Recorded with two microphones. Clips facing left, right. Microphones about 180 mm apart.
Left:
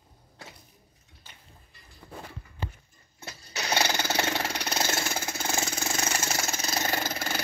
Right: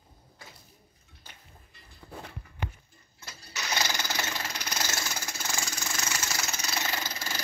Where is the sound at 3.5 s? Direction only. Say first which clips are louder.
Left 5 dB; 60° left (ahead or behind).